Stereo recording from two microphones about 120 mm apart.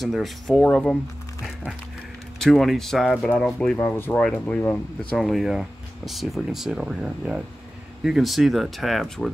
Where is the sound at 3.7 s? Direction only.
20° left (ahead or behind).